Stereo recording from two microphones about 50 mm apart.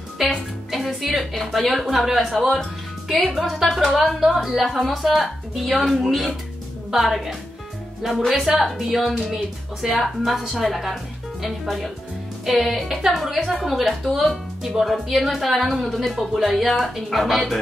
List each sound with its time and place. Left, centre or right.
0.2 s music: centre
0.7 s speech: centre